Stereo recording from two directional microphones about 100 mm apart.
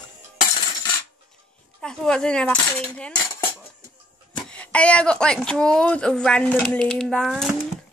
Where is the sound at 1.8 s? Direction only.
10° left (ahead or behind).